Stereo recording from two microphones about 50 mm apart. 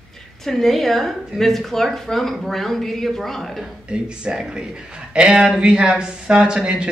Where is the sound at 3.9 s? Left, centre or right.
Centre.